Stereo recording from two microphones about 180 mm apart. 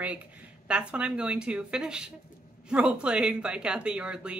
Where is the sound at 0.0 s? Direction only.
10° right (ahead or behind).